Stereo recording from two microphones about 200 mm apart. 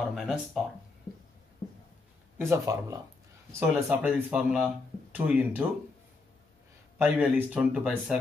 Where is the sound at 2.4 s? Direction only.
15° right (ahead or behind).